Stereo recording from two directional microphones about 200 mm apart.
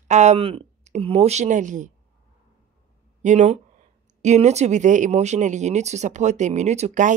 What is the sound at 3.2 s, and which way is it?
Speech, 35° right (ahead or behind).